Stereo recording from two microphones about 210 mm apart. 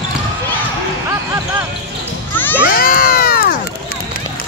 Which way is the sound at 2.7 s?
45° left (ahead or behind).